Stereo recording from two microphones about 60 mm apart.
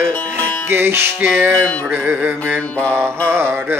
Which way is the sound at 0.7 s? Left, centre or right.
Right.